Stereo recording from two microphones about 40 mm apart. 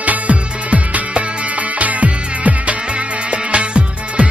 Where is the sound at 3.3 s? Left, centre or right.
Right.